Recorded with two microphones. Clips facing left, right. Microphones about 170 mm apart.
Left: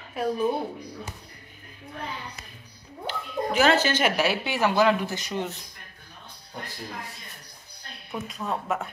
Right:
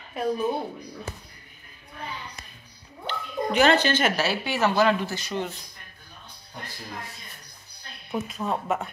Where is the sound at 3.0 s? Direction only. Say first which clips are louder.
Even; 5° left (ahead or behind).